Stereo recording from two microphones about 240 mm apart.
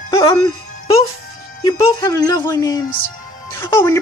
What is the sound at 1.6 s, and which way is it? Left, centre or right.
Speech, centre.